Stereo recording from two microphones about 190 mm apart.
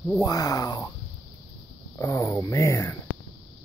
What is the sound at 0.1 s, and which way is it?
Speech, 20° left (ahead or behind).